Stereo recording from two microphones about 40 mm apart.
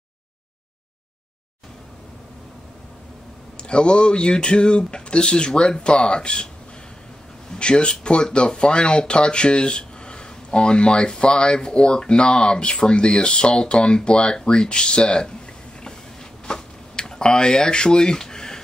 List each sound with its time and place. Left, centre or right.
3.6 s speech: left
7.5 s speech: left
16.4 s speech: centre
18.2 s a sound: centre